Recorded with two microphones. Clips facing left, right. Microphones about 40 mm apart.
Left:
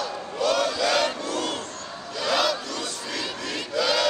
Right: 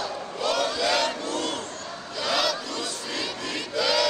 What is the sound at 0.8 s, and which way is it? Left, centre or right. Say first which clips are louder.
Battle cry: left 1 dB; left.